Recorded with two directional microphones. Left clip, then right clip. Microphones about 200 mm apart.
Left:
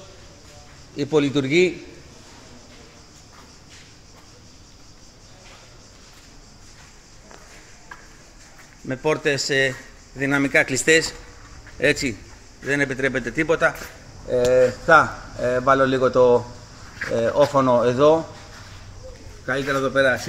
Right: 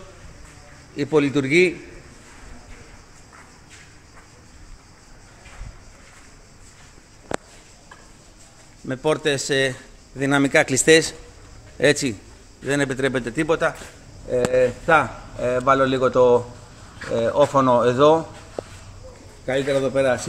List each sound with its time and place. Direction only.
0.9 s a man's voice: 10° right (ahead or behind)
8.8 s a man's voice: 10° right (ahead or behind)
11.8 s a man's voice: 20° right (ahead or behind)
19.4 s a man's voice: 15° right (ahead or behind)